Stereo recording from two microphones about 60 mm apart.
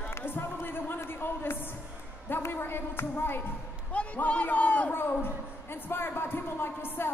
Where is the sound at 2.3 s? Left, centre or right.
Left.